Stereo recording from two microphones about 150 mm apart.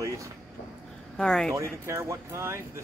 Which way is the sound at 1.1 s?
5° left (ahead or behind).